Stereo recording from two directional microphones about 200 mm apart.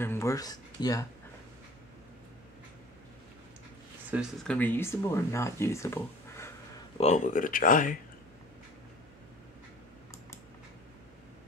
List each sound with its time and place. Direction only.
0.0 s speech: 15° left (ahead or behind)
4.1 s speech: centre (ahead or behind)
7.0 s speech: 35° left (ahead or behind)